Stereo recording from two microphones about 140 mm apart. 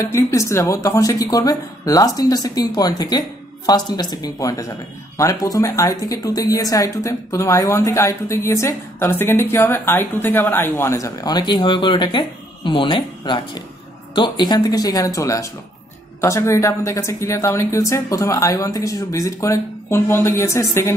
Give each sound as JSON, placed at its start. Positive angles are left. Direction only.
{"t": 0.0, "sound": "speech", "side_deg": 20}